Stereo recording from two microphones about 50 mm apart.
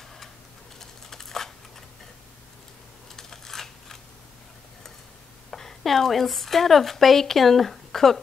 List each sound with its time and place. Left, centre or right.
0.7 s typing: centre
3.2 s a sound: centre
5.5 s speech: centre